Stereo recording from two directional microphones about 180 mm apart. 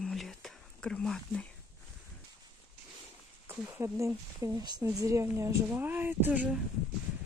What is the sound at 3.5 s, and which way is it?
Speech, 15° right (ahead or behind).